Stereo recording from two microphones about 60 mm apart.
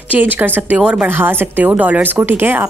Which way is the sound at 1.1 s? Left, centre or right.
Right.